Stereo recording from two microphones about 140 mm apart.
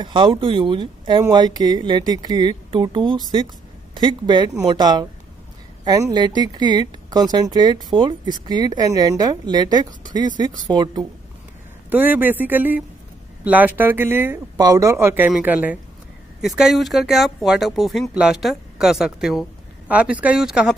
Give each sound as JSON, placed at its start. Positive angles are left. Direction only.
{"t": 0.0, "sound": "a woman's voice", "side_deg": -35}
{"t": 11.9, "sound": "a woman's voice", "side_deg": -15}